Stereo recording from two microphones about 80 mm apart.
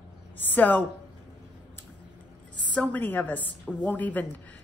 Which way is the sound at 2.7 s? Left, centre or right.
Centre.